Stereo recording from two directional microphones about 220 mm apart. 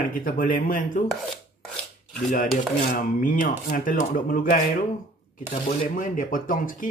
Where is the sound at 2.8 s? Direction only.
40° left (ahead or behind).